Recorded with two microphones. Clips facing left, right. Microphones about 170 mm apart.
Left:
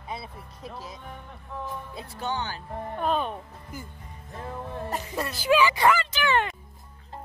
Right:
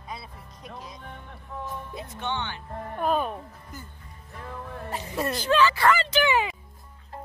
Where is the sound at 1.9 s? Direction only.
30° left (ahead or behind).